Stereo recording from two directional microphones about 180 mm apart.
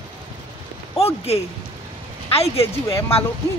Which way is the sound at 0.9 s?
35° left (ahead or behind).